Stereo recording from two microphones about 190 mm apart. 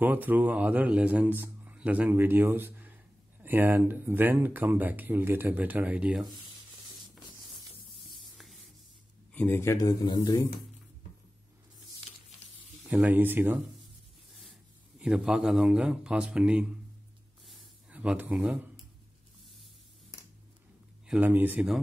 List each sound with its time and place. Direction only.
0.0 s speech: 10° right (ahead or behind)
8.1 s spray: centre (ahead or behind)
9.3 s speech: 10° left (ahead or behind)
12.8 s speech: 5° right (ahead or behind)
15.0 s speech: 5° right (ahead or behind)
17.5 s a sound: 5° right (ahead or behind)
21.1 s speech: 10° right (ahead or behind)